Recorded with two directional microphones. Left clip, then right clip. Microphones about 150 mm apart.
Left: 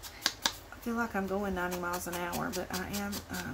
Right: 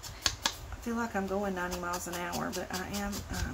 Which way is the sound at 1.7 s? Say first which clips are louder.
Even; 5° left (ahead or behind).